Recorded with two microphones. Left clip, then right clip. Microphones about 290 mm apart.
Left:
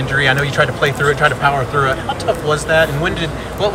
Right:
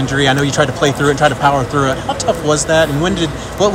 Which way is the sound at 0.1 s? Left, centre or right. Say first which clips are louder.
Even; centre.